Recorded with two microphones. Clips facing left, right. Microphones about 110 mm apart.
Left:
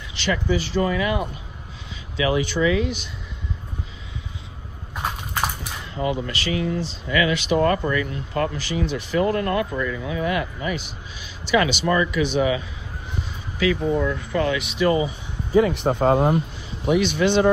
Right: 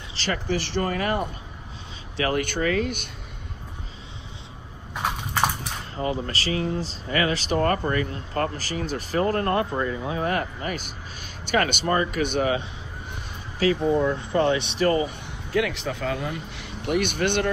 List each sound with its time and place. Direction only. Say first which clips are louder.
0.1 s speech: left 4 dB; 40° right (ahead or behind)
6.0 s speech: left 2 dB; 35° right (ahead or behind)
13.1 s speech: left 4 dB; 40° right (ahead or behind)
15.0 s a man's voice: left 3 dB; 85° right
16.5 s speech: left 4 dB; 60° right (ahead or behind)